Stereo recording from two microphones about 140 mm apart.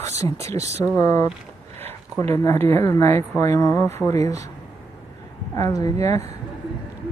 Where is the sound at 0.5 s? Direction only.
50° right (ahead or behind).